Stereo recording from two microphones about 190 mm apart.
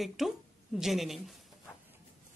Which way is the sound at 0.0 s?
Centre (ahead or behind).